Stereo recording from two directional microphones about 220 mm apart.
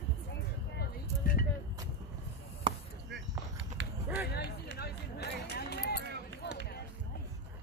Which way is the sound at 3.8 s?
55° right (ahead or behind).